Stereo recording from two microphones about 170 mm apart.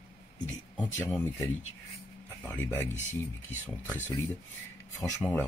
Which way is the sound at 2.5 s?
10° left (ahead or behind).